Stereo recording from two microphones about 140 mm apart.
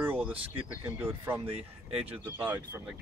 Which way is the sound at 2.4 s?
15° right (ahead or behind).